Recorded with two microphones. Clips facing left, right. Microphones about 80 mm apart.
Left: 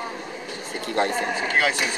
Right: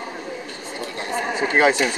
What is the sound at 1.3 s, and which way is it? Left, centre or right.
Speech, right.